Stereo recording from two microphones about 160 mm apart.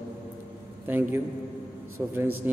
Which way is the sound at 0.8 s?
10° right (ahead or behind).